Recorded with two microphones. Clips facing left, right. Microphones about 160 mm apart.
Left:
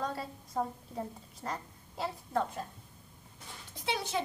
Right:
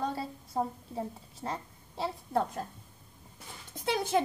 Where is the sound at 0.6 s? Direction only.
25° right (ahead or behind).